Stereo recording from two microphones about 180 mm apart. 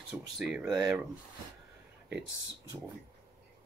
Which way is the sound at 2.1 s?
75° right (ahead or behind).